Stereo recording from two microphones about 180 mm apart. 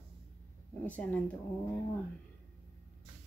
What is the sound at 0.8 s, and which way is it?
Speech, 10° left (ahead or behind).